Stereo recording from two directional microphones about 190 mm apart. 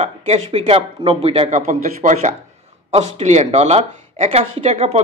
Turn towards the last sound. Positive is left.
turn(degrees=-35)  # may be behind; listen again after turning